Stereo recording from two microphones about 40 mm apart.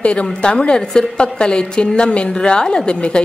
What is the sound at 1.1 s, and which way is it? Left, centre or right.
A woman's voice, left.